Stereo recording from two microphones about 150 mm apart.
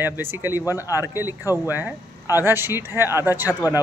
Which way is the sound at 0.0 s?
15° right (ahead or behind).